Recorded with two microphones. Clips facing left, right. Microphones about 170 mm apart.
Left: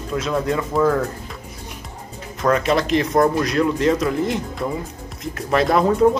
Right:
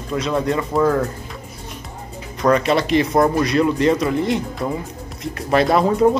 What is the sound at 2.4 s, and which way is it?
Speech, centre (ahead or behind).